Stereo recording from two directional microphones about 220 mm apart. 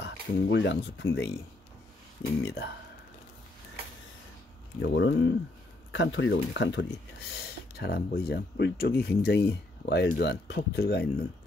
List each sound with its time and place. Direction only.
0.0 s speech: 55° left (ahead or behind)
2.4 s speech: 50° left (ahead or behind)
4.8 s speech: 55° left (ahead or behind)